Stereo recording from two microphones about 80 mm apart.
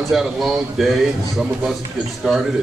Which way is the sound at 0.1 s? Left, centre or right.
Centre.